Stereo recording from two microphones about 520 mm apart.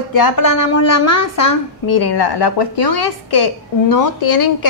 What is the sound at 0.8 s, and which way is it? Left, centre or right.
Speech, left.